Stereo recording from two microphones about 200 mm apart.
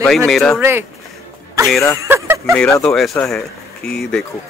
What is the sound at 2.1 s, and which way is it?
Speech, 10° right (ahead or behind).